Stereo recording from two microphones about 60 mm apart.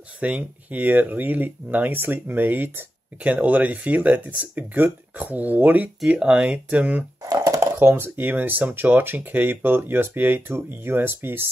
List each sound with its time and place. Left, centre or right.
0.2 s speech: right
3.2 s speech: right
7.4 s a sound: right
7.8 s speech: right